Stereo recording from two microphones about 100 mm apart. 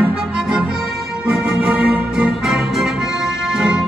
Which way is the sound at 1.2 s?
5° right (ahead or behind).